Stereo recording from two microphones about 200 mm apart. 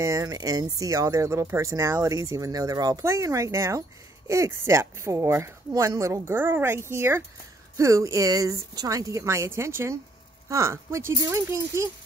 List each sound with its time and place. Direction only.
0.0 s speech: 15° right (ahead or behind)